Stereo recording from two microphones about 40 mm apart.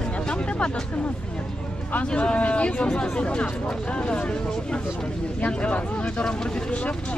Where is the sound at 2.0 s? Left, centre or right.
Left.